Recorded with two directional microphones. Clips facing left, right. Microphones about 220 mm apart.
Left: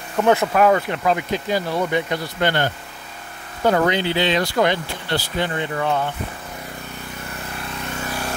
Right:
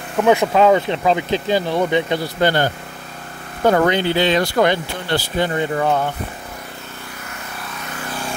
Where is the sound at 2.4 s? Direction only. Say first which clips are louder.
Right 3 dB; 40° right (ahead or behind).